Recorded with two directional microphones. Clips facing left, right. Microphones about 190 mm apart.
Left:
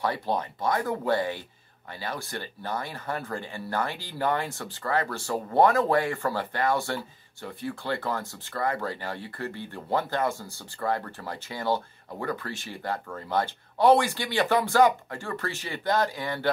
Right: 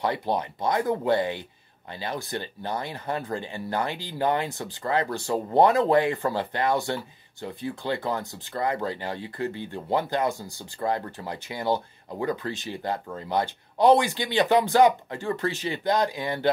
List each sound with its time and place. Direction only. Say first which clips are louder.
0.0 s speech: right 2 dB; 15° right (ahead or behind)